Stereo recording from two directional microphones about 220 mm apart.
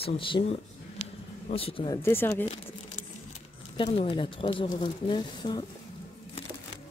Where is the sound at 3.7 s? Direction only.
25° left (ahead or behind).